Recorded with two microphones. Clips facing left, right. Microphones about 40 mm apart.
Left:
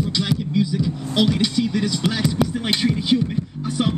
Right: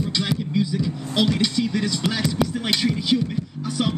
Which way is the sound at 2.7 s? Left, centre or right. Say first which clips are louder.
Left 2 dB; centre.